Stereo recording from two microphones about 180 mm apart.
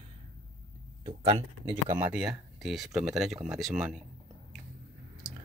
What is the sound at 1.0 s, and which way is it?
Speech, 30° right (ahead or behind).